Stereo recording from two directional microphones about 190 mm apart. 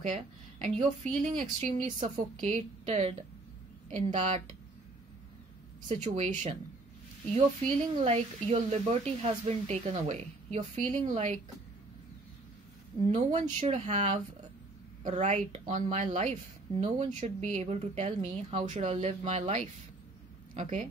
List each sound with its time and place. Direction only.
0.0 s a woman's voice: 40° right (ahead or behind)
5.9 s a woman's voice: 35° right (ahead or behind)
13.0 s a woman's voice: 40° right (ahead or behind)